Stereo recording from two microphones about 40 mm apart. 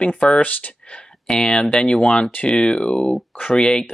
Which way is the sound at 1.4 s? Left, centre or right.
Left.